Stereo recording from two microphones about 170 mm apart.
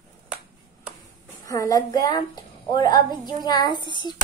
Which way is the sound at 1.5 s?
20° left (ahead or behind).